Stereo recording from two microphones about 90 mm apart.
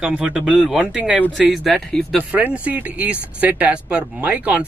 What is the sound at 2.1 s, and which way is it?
Speech, 15° right (ahead or behind).